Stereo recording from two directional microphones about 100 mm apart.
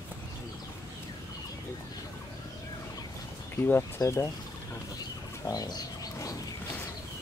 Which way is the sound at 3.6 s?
20° left (ahead or behind).